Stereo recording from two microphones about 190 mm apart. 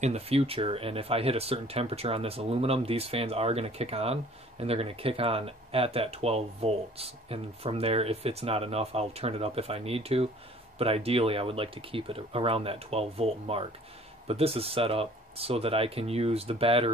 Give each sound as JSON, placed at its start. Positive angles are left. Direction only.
{"t": 0.0, "sound": "speech", "side_deg": -35}